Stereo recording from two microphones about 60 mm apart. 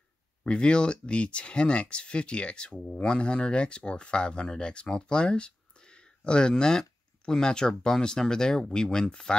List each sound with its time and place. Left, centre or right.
0.4 s speech: centre